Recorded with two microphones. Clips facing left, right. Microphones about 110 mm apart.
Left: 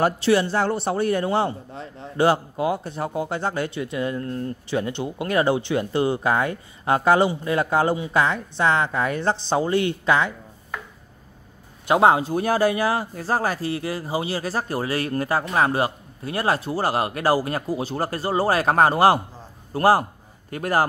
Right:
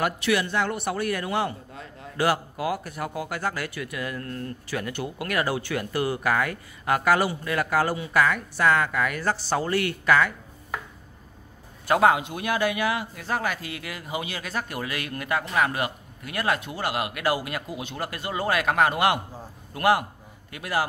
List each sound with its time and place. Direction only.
0.0 s a man's voice: 30° left (ahead or behind)
11.9 s a man's voice: 30° left (ahead or behind)